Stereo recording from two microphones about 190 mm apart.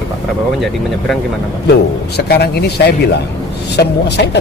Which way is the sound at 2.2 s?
60° left (ahead or behind).